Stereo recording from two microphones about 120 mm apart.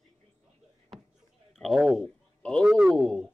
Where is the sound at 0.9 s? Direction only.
Centre (ahead or behind).